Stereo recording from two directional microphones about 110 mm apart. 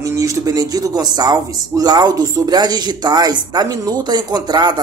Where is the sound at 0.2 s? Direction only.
30° right (ahead or behind).